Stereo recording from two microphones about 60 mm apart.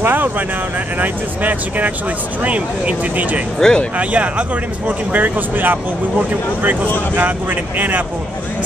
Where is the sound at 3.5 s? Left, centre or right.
Centre.